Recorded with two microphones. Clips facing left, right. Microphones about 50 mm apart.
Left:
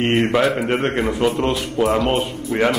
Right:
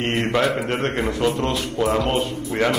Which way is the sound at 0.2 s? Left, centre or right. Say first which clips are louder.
Left 3 dB; centre.